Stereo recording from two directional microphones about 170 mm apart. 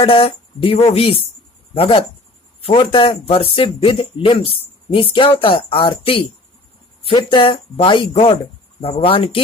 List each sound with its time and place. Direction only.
0.0 s speech: 30° left (ahead or behind)